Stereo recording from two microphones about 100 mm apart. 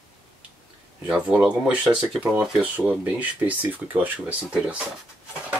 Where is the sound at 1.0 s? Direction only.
5° right (ahead or behind).